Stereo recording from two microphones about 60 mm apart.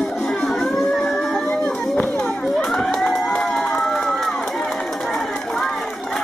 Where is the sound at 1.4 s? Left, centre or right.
Left.